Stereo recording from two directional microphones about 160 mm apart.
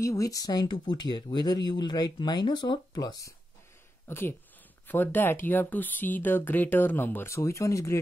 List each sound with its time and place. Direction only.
0.0 s speech: 20° left (ahead or behind)